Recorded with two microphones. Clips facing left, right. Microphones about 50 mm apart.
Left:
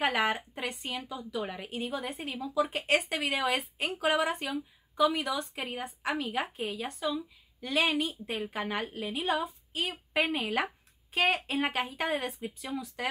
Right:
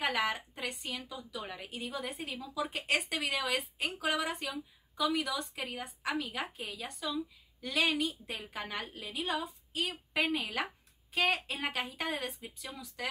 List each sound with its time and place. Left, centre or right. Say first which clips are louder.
0.0 s a woman's voice: left 4 dB; left